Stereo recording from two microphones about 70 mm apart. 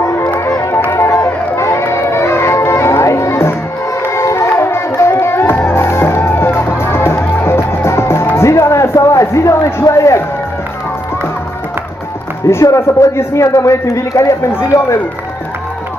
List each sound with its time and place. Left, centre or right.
1.5 s music: left
8.4 s a sound: left
12.5 s a man's voice: left
14.7 s speech: left